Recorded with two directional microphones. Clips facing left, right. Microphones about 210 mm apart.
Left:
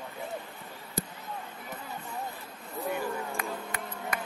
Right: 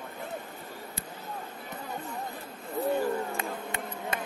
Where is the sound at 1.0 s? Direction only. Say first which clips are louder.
Left 7 dB; 45° left (ahead or behind).